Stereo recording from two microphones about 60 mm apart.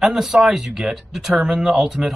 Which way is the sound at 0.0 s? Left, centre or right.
Centre.